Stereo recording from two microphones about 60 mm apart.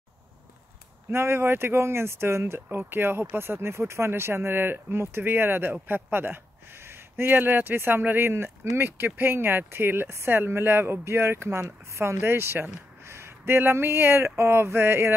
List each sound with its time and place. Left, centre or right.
1.1 s speech: right